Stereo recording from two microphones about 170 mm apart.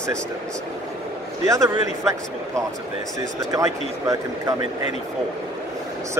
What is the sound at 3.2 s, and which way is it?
Speech, 20° right (ahead or behind).